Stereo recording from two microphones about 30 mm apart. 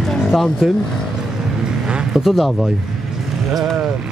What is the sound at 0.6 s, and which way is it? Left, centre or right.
Speech, centre.